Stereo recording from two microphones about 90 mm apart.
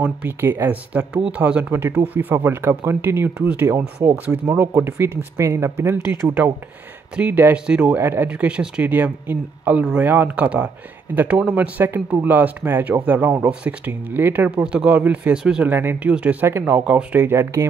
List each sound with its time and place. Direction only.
0.0 s speech: 20° right (ahead or behind)
7.5 s speech: 10° right (ahead or behind)
8.0 s speech: 25° right (ahead or behind)
8.3 s speech: 10° right (ahead or behind)
15.7 s speech: 25° right (ahead or behind)